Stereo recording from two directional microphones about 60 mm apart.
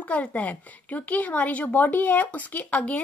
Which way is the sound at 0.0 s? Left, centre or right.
Left.